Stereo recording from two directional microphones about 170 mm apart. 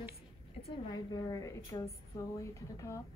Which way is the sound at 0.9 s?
20° left (ahead or behind).